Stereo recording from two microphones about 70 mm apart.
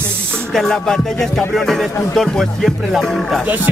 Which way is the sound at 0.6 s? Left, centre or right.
Centre.